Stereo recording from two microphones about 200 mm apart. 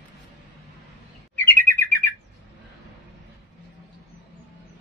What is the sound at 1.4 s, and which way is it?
Bird, 10° left (ahead or behind).